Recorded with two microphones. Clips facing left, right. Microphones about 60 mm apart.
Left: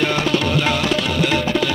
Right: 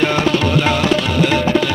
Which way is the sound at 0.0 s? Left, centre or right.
Right.